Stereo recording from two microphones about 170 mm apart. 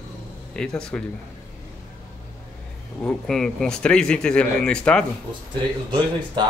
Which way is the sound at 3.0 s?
5° left (ahead or behind).